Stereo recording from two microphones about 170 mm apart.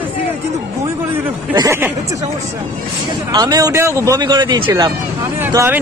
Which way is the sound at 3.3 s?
20° right (ahead or behind).